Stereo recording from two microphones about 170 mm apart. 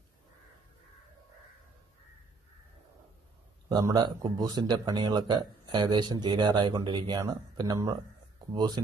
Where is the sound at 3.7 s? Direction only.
25° right (ahead or behind).